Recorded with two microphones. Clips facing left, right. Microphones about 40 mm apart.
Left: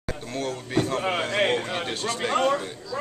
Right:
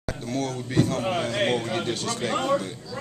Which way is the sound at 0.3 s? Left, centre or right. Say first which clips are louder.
Even; centre.